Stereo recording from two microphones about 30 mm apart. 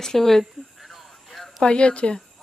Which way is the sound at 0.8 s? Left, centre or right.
Centre.